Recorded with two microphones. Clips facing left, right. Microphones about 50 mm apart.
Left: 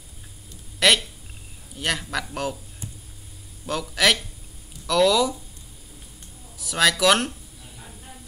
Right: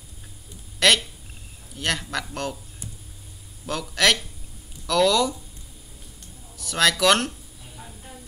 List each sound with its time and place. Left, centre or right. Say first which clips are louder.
0.7 s a sound: even; centre
1.8 s a man's voice: even; centre
3.6 s a man's voice: even; centre
6.6 s a man's voice: even; centre